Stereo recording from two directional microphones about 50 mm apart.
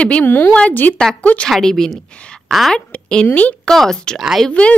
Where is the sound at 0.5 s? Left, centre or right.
Left.